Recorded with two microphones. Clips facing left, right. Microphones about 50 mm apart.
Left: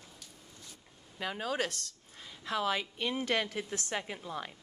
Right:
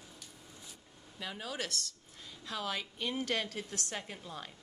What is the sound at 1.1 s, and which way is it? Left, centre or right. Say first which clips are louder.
Speech: left 6 dB; left.